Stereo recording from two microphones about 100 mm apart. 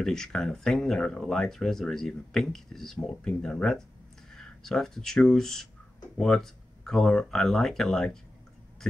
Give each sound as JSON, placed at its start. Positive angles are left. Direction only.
{"t": 0.0, "sound": "speech", "side_deg": 5}